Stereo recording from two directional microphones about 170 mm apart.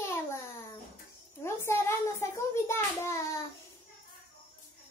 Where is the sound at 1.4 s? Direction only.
15° left (ahead or behind).